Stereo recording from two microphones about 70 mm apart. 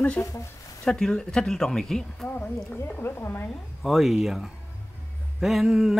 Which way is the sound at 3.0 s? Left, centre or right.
Left.